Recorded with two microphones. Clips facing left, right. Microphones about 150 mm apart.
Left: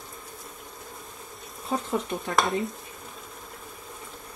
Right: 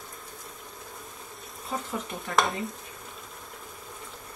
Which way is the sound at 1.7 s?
30° left (ahead or behind).